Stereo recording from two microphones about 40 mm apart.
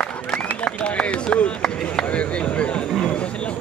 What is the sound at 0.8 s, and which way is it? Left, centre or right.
Chop, left.